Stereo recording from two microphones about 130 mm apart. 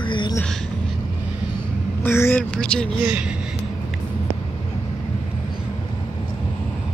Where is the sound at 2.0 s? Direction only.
15° left (ahead or behind).